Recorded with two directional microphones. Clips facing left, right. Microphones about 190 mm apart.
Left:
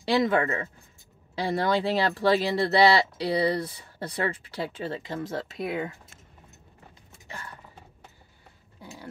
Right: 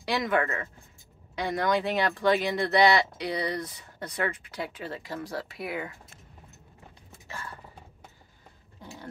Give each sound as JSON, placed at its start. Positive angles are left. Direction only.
{"t": 0.0, "sound": "speech", "side_deg": 25}